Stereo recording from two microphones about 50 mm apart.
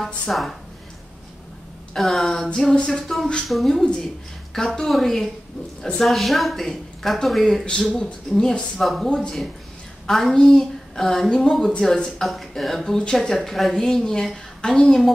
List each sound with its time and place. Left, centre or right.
0.0 s a woman's voice: centre
2.0 s a woman's voice: centre
2.5 s a capella: centre
2.9 s a woman's voice: centre
7.6 s a woman's voice: centre
8.7 s a woman's voice: centre
13.7 s a woman's voice: centre